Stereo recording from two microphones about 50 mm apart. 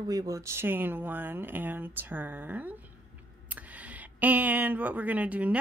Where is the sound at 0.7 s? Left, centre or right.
Right.